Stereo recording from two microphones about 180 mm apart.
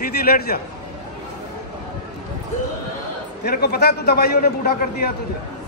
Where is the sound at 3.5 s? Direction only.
65° left (ahead or behind).